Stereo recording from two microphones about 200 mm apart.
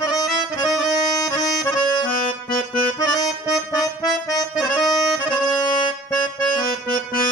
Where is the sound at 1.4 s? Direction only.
20° left (ahead or behind).